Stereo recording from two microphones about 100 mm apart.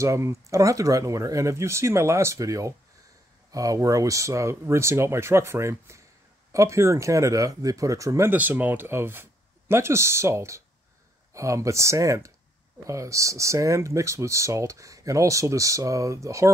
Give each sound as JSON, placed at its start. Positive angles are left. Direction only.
{"t": 0.0, "sound": "speech", "side_deg": -30}
{"t": 8.3, "sound": "speech", "side_deg": -15}